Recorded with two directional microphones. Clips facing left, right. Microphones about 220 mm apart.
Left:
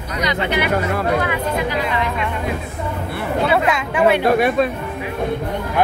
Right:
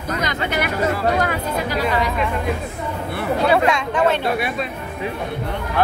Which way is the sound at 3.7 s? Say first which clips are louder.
Left 2 dB; 5° left (ahead or behind).